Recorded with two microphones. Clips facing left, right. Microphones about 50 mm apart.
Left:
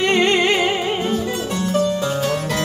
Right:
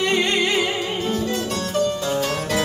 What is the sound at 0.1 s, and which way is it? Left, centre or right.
Music, left.